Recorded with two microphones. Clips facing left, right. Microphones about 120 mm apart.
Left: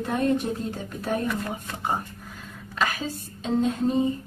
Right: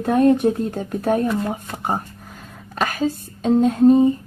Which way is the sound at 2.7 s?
50° right (ahead or behind).